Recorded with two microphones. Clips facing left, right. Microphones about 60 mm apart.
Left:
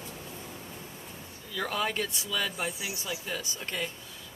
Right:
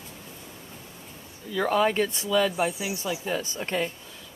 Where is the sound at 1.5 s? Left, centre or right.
Right.